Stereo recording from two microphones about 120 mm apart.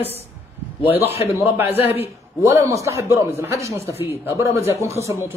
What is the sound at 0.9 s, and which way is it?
Speech, 55° left (ahead or behind).